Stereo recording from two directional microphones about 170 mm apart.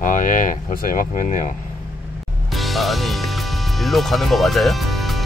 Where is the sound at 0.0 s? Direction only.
50° left (ahead or behind).